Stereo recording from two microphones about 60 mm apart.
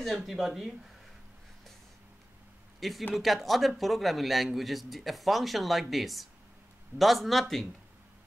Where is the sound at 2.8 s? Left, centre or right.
Centre.